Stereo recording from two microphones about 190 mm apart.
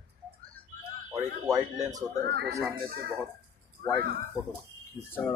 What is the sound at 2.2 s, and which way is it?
Speech, 60° right (ahead or behind).